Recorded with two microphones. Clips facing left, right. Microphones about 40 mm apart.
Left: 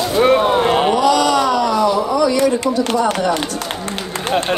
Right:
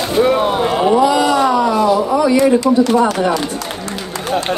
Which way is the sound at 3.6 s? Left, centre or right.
Left.